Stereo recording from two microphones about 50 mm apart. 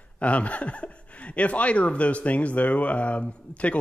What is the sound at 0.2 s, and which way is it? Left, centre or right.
Speech, left.